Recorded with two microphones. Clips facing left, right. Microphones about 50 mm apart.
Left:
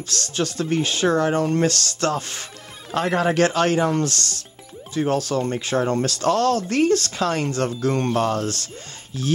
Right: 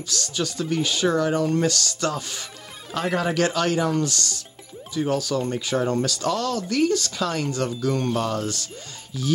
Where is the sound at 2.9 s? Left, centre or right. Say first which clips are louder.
Left 3 dB; left.